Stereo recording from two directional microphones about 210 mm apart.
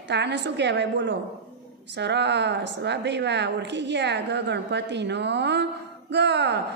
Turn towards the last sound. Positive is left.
turn(degrees=-55)  # may be behind; listen again after turning